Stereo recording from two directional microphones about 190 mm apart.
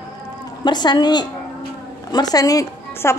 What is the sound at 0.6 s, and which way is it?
A woman's voice, 25° left (ahead or behind).